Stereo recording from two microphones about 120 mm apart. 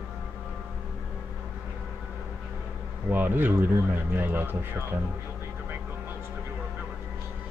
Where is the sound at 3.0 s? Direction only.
15° right (ahead or behind).